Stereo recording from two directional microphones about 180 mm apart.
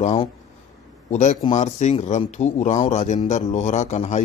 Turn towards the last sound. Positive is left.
turn(degrees=40)  # may be behind; listen again after turning